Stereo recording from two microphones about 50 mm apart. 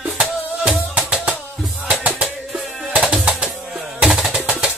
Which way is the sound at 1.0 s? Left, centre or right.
Centre.